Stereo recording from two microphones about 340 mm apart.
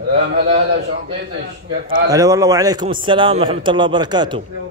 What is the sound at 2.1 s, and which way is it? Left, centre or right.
A man's voice, centre.